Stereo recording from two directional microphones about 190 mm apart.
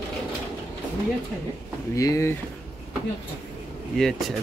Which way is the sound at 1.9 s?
15° left (ahead or behind).